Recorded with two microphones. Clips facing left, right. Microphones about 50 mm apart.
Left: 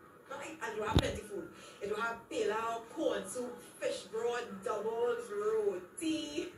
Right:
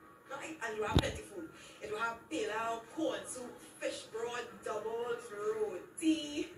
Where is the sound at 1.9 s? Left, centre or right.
Centre.